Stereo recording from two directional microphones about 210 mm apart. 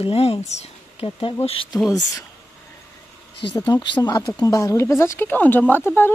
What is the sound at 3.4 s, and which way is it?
Speech, 20° left (ahead or behind).